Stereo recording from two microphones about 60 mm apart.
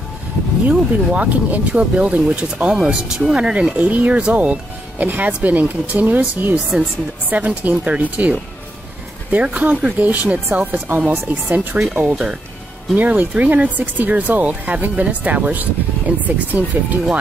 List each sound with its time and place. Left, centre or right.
0.7 s speech: right